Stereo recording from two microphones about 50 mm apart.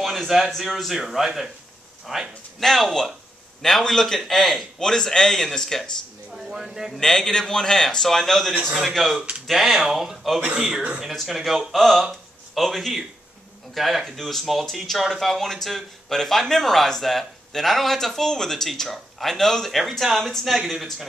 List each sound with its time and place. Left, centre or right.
0.0 s speech: centre
2.6 s speech: centre
6.3 s speech: centre
7.0 s speech: centre
10.6 s speech: right
11.2 s speech: centre